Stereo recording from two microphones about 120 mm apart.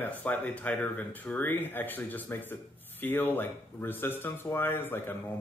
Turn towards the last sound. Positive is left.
turn(degrees=20)  # may be behind; listen again after turning